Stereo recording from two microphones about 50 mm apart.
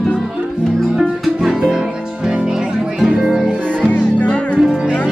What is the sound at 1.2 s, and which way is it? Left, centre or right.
Music, centre.